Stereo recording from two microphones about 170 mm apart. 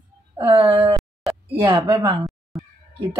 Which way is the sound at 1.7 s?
30° right (ahead or behind).